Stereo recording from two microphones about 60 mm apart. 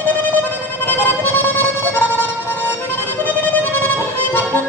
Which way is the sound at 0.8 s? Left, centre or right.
Left.